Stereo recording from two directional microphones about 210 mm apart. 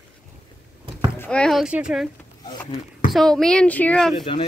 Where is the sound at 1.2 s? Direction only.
5° left (ahead or behind).